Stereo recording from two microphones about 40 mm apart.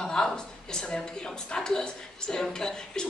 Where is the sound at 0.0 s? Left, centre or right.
Centre.